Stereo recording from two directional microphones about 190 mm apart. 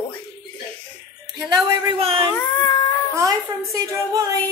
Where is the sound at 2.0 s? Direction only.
30° right (ahead or behind).